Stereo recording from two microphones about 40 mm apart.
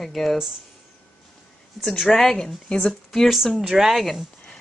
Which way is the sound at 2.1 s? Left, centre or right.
Centre.